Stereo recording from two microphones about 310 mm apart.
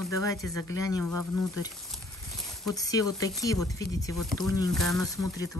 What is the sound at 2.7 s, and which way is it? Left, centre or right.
Speech, centre.